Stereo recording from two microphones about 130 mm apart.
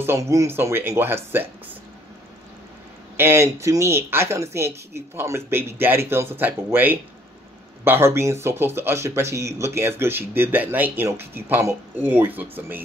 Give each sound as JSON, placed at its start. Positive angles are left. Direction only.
{"t": 0.0, "sound": "speech", "side_deg": -20}
{"t": 3.2, "sound": "speech", "side_deg": -20}